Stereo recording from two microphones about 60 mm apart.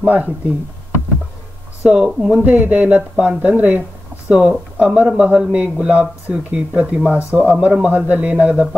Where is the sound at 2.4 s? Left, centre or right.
Right.